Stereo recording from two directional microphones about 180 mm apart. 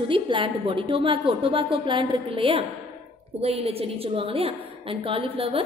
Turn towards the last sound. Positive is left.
turn(degrees=-30)  # may be behind; listen again after turning